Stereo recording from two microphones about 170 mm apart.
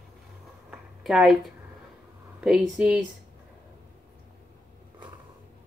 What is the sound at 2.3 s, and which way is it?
Speech, 5° right (ahead or behind).